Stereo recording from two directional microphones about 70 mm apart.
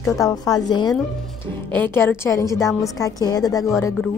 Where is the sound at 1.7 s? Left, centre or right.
Left.